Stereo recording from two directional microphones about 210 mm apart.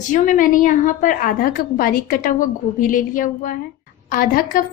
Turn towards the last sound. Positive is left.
turn(degrees=40)  # may be behind; listen again after turning